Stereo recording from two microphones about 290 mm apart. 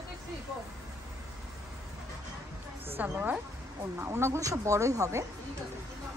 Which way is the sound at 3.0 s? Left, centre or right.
Centre.